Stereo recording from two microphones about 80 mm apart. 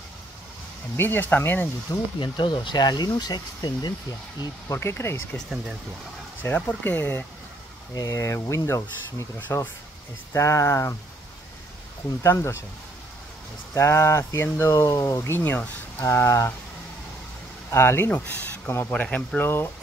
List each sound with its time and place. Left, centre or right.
0.9 s speech: left
2.1 s speech: left
4.6 s speech: left
6.4 s speech: left
7.9 s speech: left
9.5 s speech: left
10.3 s speech: left
12.2 s speech: left
13.7 s speech: left
14.9 s speech: left
16.0 s speech: left
17.6 s speech: left; by 19.4 s centre
19.4 s speech: left